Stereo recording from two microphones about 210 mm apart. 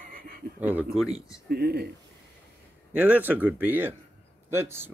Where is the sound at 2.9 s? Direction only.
10° right (ahead or behind).